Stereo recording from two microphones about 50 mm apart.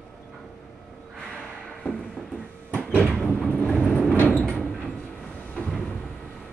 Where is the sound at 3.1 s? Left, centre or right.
Left.